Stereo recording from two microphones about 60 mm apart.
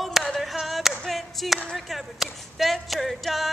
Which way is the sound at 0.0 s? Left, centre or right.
Centre.